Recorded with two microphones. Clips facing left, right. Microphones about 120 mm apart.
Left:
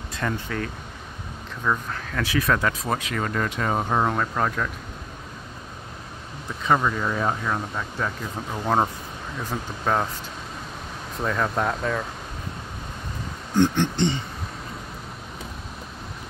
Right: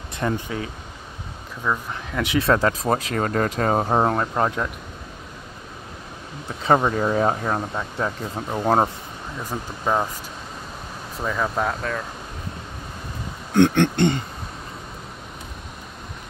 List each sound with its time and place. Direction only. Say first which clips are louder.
0.1 s speech: right 3 dB; 20° right (ahead or behind)
1.9 s speech: right 2 dB; 20° right (ahead or behind)
4.5 s speech: right 2 dB; 15° right (ahead or behind)
6.6 s speech: right 3 dB; 35° right (ahead or behind)
9.4 s speech: right 1 dB; 10° right (ahead or behind)
11.1 s speech: even; 5° right (ahead or behind)
13.6 s speech: right 4 dB; 55° right (ahead or behind)